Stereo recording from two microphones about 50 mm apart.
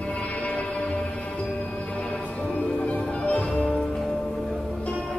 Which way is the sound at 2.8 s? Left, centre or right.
Left.